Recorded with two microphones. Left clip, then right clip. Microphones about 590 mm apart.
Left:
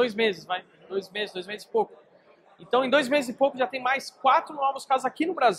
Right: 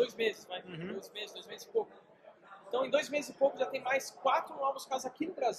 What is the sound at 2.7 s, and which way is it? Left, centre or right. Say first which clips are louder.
Speech: left 10 dB; left.